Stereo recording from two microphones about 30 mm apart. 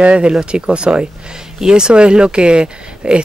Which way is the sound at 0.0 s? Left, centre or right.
Right.